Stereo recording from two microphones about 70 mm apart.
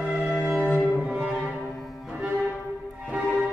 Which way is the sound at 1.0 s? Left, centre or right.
Centre.